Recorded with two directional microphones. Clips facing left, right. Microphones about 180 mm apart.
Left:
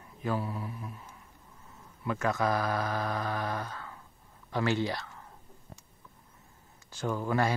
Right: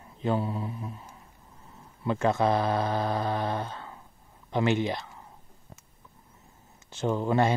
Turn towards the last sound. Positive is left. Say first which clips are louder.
# right 4 dB
turn(degrees=-25)  # may be behind; listen again after turning